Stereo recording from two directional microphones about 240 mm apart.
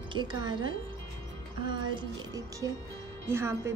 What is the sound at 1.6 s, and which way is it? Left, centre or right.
Speech, centre.